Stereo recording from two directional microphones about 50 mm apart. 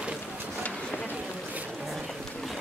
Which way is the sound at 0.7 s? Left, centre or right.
Left.